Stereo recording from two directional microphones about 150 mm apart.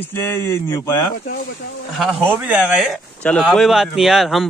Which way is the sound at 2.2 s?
10° right (ahead or behind).